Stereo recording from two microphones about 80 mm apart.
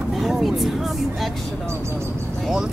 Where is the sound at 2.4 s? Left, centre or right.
Centre.